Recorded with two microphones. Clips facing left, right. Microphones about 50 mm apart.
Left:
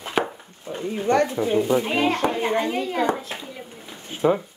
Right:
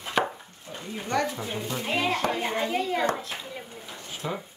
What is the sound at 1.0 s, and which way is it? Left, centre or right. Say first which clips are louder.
Speech: left 7 dB; left.